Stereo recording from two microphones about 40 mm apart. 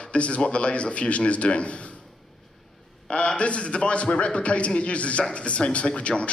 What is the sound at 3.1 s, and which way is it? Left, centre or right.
A man's voice, left.